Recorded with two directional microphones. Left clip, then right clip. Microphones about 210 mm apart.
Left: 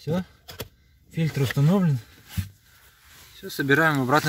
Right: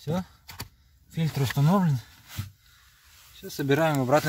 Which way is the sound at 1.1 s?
15° right (ahead or behind).